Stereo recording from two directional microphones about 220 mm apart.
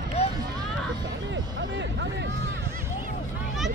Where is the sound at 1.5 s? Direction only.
55° right (ahead or behind).